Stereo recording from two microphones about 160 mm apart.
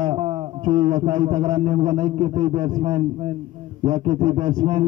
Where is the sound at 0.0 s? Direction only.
30° right (ahead or behind).